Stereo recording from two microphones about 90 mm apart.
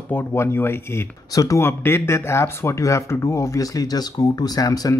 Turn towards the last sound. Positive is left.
turn(degrees=45)  # may be behind; listen again after turning